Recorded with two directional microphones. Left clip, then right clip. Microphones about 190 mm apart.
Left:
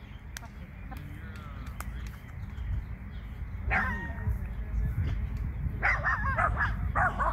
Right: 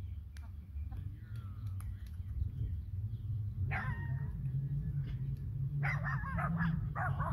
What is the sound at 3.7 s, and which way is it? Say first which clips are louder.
Dog: left 12 dB; 50° right (ahead or behind).